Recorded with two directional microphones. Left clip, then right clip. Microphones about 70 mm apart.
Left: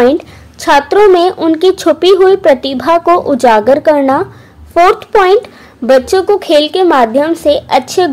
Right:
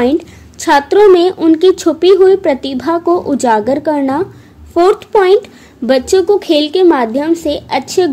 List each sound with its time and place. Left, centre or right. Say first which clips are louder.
0.0 s a woman's voice: left 4 dB; right
1.8 s speech: left 1 dB; right